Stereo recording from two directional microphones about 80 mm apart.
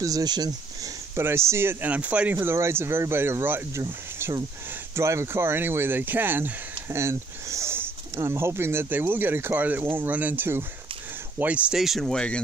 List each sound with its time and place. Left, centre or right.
0.0 s speech: right
1.1 s speech: right
1.9 s speech: centre
2.4 s speech: right
11.7 s speech: centre